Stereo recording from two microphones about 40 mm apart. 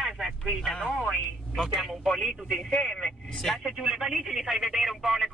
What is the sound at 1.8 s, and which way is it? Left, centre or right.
Speech, centre.